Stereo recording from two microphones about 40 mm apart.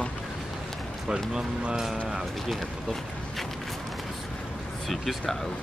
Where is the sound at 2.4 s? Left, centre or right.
Centre.